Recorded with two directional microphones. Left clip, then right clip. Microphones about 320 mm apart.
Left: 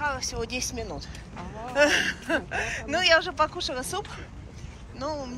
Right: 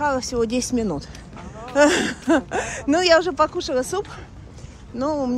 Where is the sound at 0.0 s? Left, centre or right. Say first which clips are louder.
Right 7 dB; centre.